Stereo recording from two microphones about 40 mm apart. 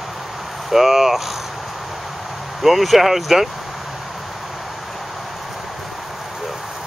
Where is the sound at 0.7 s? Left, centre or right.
Centre.